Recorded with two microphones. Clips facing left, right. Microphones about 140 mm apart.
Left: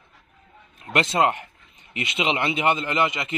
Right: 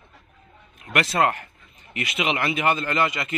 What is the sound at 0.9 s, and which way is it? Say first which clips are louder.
A man's voice: left 1 dB; 25° left (ahead or behind).